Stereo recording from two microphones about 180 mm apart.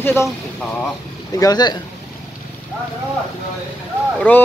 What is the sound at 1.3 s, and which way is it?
Speech, 20° left (ahead or behind).